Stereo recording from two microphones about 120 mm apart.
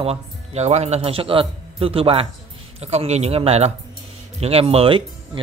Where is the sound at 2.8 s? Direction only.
60° right (ahead or behind).